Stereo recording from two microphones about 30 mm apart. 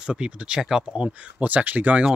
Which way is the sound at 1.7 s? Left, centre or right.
Right.